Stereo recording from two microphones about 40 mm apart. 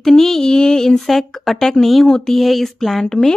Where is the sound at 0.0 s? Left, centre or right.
Centre.